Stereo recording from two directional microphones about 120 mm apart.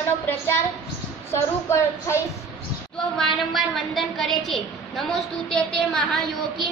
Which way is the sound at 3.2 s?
Centre (ahead or behind).